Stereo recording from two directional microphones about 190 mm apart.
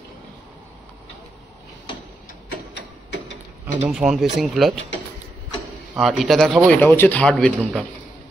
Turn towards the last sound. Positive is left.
turn(degrees=5)  # may be behind; listen again after turning